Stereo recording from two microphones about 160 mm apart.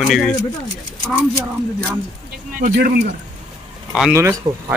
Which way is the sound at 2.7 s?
70° right (ahead or behind).